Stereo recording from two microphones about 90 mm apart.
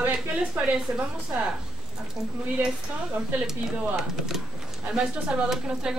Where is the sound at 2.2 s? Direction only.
5° right (ahead or behind).